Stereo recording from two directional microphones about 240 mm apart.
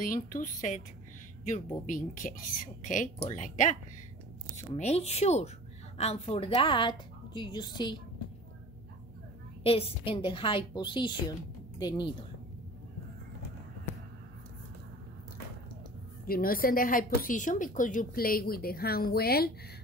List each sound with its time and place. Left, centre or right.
0.0 s a woman's voice: left
1.9 s a woman's voice: left
9.6 s a woman's voice: left
16.3 s a woman's voice: left